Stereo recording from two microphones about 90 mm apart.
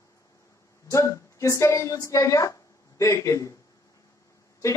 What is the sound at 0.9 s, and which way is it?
A woman's voice, 35° left (ahead or behind).